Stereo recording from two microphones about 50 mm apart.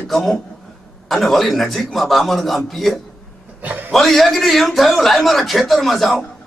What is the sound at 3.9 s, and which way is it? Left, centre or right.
Speech, centre.